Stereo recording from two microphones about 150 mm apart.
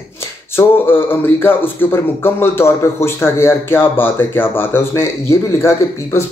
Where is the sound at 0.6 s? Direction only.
15° left (ahead or behind).